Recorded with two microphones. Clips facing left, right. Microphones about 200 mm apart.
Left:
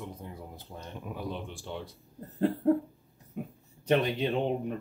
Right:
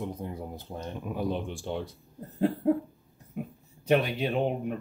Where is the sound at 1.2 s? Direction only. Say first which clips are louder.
Right 8 dB; 45° right (ahead or behind).